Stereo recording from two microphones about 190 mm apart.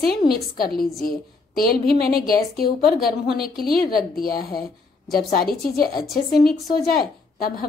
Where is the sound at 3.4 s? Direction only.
55° left (ahead or behind).